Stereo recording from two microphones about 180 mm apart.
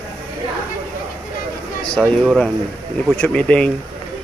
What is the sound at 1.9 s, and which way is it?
Speech, centre (ahead or behind).